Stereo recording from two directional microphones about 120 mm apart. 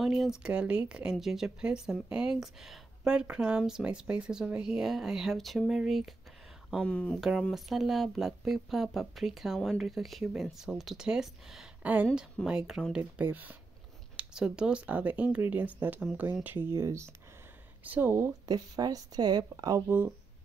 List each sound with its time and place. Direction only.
0.0 s speech: 5° right (ahead or behind)
7.2 s speech: 5° right (ahead or behind)
13.2 s speech: 15° right (ahead or behind); by 19.8 s 30° right (ahead or behind)